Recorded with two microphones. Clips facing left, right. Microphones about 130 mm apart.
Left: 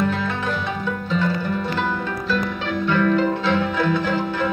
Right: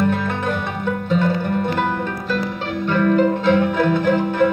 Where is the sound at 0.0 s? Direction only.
55° right (ahead or behind).